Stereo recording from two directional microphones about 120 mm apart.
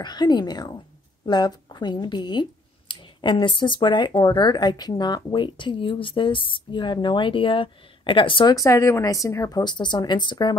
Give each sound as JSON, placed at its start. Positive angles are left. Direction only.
{"t": 0.0, "sound": "speech", "side_deg": 35}
{"t": 8.5, "sound": "speech", "side_deg": 25}